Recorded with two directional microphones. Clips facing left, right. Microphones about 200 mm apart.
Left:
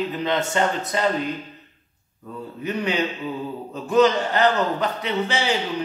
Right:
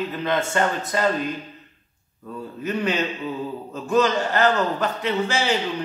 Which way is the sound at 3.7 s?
20° left (ahead or behind).